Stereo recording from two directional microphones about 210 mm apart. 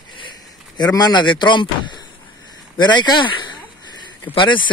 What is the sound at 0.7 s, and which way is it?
A man's voice, 20° left (ahead or behind).